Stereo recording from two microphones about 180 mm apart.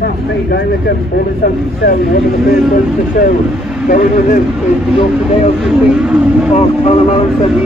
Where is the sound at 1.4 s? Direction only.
55° left (ahead or behind).